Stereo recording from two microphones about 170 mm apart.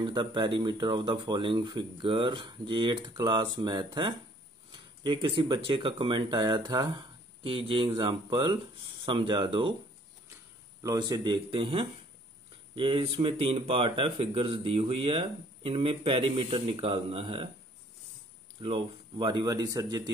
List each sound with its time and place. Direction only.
0.0 s speech: 30° right (ahead or behind)
10.8 s speech: 20° right (ahead or behind)
18.6 s speech: 30° right (ahead or behind)